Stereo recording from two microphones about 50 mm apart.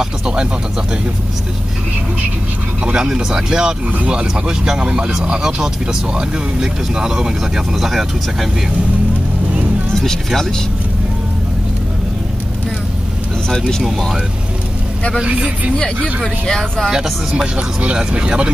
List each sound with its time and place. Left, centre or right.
2.8 s speech: centre
9.9 s speech: centre
13.5 s speech: centre
13.8 s speech: centre
15.1 s speech: right
15.7 s speech: centre
16.9 s speech: centre